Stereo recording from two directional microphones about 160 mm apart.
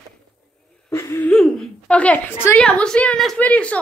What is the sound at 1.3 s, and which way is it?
A woman's voice, 5° left (ahead or behind).